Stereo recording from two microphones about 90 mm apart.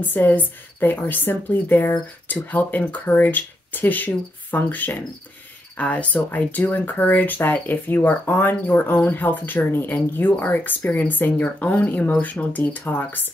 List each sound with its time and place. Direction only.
0.1 s speech: 20° left (ahead or behind)